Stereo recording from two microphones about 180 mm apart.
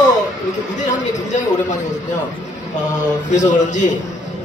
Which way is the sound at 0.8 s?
45° left (ahead or behind).